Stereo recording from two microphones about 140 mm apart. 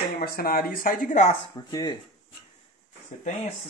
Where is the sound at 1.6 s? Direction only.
30° left (ahead or behind).